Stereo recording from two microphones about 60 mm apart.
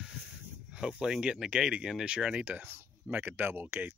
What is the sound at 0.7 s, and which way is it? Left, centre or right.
Speech, centre.